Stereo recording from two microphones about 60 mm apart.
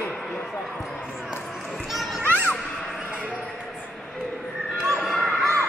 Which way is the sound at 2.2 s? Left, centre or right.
Right.